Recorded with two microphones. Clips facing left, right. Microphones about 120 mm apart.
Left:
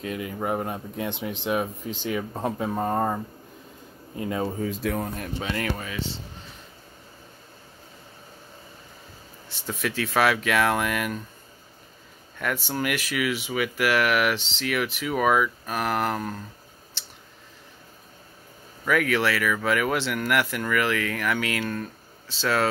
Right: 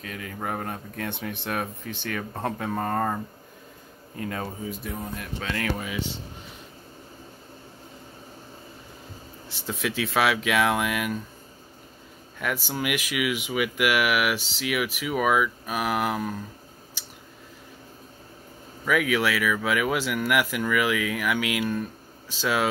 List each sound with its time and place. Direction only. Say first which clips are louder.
0.0 s speech: left 4 dB; 20° left (ahead or behind)
4.2 s speech: left 4 dB; 20° left (ahead or behind)
4.6 s speech: left 6 dB; 90° left
5.4 s speech: left 1 dB; 10° left (ahead or behind)
5.8 s speech: right 1 dB; 10° right (ahead or behind)
9.5 s speech: even; 5° right (ahead or behind)
12.6 s speech: left 1 dB; 10° right (ahead or behind)
17.0 s a sound: even; 10° right (ahead or behind)
18.9 s speech: left 1 dB; 5° right (ahead or behind)